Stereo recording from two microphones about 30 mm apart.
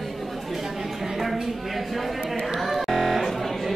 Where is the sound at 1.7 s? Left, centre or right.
Centre.